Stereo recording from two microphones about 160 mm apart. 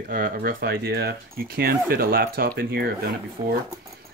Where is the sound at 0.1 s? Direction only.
60° right (ahead or behind).